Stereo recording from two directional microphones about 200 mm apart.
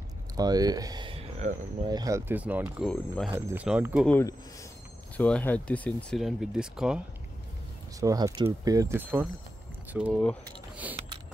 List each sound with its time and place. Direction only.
0.4 s speech: 20° right (ahead or behind)
1.4 s speech: 40° right (ahead or behind)
1.9 s speech: 20° right (ahead or behind)
4.1 s speech: 15° left (ahead or behind); by 7.0 s 5° right (ahead or behind)
8.0 s speech: 20° right (ahead or behind); by 10.3 s 5° right (ahead or behind)